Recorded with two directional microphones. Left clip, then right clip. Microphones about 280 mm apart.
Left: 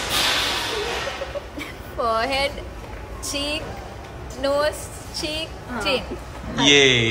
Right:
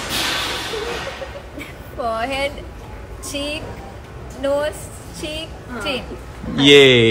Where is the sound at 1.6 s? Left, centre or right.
Centre.